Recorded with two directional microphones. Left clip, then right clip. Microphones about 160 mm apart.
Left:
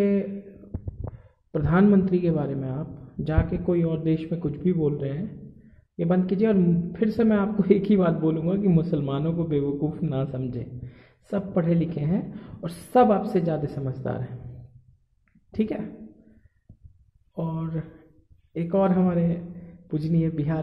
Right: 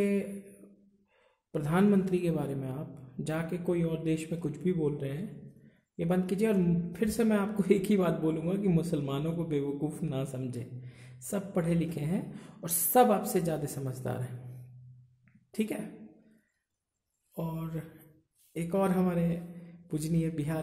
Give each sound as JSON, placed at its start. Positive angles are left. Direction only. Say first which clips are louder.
{"t": 0.0, "sound": "a sound", "louder": "left 6 dB", "side_deg": -20}
{"t": 1.1, "sound": "speech", "louder": "left 6 dB", "side_deg": -20}
{"t": 15.5, "sound": "speech", "louder": "left 6 dB", "side_deg": -20}
{"t": 17.4, "sound": "speech", "louder": "left 6 dB", "side_deg": -20}